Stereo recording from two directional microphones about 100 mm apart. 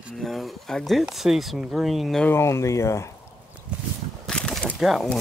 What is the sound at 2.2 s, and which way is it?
Speech, 25° left (ahead or behind).